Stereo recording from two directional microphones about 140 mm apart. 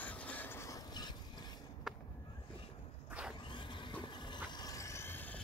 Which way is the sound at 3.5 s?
35° left (ahead or behind).